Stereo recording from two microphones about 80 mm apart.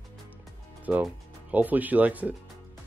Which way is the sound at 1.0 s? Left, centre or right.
Centre.